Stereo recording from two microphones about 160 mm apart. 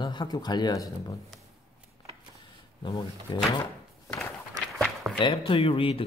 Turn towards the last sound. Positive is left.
turn(degrees=35)  # may be behind; listen again after turning